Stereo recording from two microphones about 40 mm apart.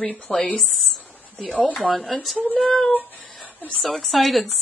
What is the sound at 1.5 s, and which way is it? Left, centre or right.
A woman's voice, centre.